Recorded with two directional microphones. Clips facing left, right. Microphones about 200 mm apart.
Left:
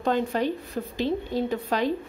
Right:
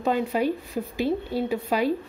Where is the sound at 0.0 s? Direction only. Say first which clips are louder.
Right 1 dB; 10° right (ahead or behind).